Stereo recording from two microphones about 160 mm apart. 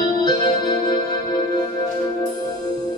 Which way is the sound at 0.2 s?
25° left (ahead or behind).